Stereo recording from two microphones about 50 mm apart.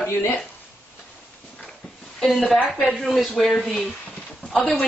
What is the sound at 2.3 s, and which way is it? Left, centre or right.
A woman's voice, centre.